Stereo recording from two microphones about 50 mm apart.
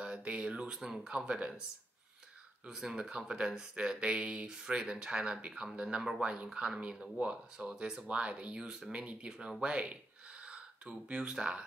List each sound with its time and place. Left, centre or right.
0.0 s a sound: right
0.7 s speech: centre
2.6 s speech: centre
8.9 s speech: right